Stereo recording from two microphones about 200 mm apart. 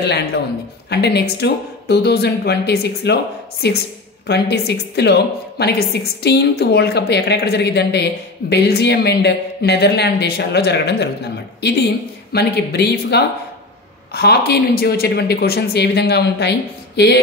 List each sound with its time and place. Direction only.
0.0 s a woman's voice: 55° left (ahead or behind)